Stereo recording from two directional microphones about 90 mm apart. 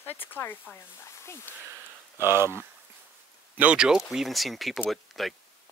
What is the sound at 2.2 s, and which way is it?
Speech, 25° right (ahead or behind).